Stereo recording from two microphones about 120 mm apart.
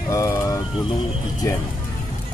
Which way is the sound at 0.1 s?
30° left (ahead or behind).